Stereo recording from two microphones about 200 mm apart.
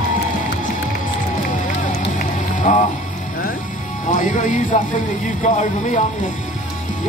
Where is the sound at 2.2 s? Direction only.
40° left (ahead or behind).